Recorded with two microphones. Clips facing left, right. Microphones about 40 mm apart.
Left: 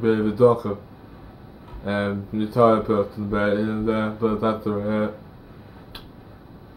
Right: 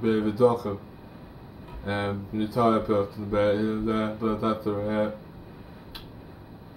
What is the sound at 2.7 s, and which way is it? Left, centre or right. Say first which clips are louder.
Speech: left 3 dB; centre.